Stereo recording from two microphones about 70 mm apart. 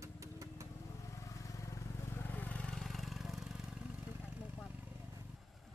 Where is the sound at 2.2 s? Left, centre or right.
Left.